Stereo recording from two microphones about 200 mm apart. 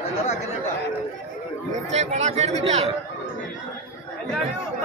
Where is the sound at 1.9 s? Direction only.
35° right (ahead or behind).